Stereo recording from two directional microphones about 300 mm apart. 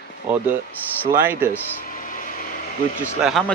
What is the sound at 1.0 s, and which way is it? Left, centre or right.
Speech, centre.